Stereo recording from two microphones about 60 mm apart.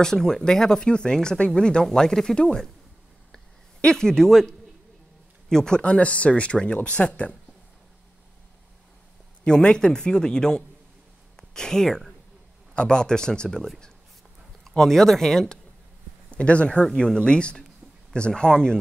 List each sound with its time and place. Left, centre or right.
0.0 s speech: centre
3.8 s speech: centre
9.4 s speech: centre
16.3 s speech: left